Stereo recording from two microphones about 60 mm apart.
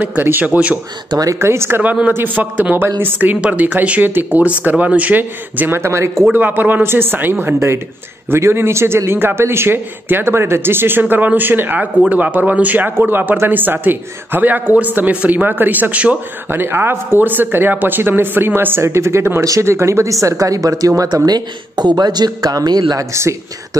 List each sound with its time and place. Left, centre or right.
0.2 s a man's voice: right
1.1 s speech: right
1.4 s speech: right
1.8 s a man's voice: right
4.4 s a man's voice: right
5.8 s speech: right
6.3 s a man's voice: right
16.4 s a man's voice: right
21.9 s speech: right